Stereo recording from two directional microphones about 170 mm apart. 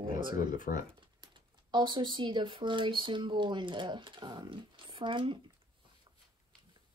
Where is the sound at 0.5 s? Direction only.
50° left (ahead or behind).